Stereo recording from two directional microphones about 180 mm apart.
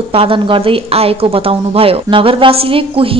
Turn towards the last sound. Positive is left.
turn(degrees=-30)  # may be behind; listen again after turning